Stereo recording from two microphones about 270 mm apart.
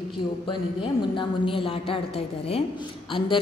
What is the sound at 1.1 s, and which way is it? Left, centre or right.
A woman's voice, centre.